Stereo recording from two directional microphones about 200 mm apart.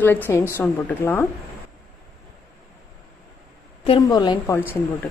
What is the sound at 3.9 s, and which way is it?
Speech, 20° left (ahead or behind).